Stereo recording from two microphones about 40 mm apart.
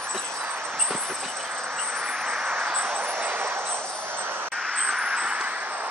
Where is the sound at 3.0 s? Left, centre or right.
Right.